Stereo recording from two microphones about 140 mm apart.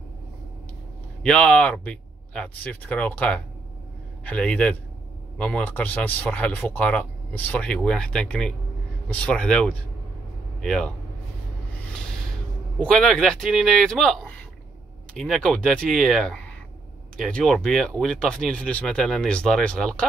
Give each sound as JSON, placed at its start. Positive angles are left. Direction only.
{"t": 1.2, "sound": "speech", "side_deg": 5}
{"t": 12.7, "sound": "speech", "side_deg": 5}